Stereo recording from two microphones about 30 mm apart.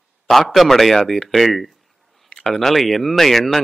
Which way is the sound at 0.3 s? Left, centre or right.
Centre.